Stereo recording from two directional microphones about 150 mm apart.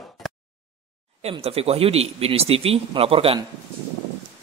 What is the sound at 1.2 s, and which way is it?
Speech, 40° right (ahead or behind).